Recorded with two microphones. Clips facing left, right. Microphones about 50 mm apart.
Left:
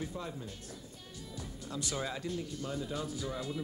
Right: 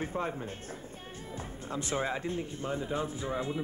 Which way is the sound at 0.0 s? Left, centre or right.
Right.